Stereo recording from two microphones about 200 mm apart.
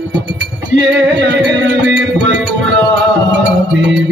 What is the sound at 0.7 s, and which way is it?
Music, 60° right (ahead or behind).